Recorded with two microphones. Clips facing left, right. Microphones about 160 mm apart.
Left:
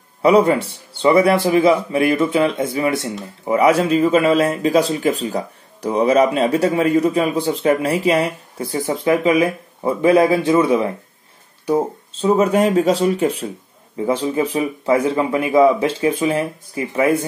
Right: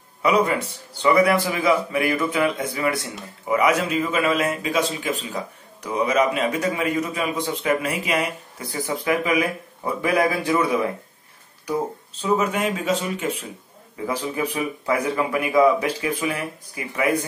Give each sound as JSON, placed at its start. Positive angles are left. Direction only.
{"t": 0.2, "sound": "a man's voice", "side_deg": 30}
{"t": 13.9, "sound": "speech", "side_deg": 25}